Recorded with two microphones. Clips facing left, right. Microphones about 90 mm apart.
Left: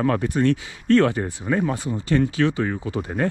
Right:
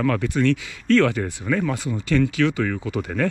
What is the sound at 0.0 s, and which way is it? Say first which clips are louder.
Speech: left 1 dB; 35° left (ahead or behind).